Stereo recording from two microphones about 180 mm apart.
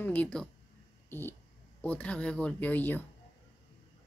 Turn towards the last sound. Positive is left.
turn(degrees=10)  # may be behind; listen again after turning